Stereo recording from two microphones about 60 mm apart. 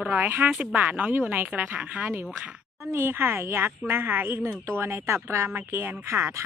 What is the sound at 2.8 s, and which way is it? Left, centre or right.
A woman's voice, right.